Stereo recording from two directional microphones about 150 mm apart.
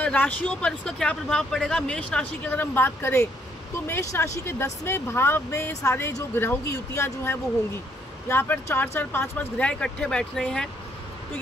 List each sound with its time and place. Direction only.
0.0 s speech: 10° left (ahead or behind)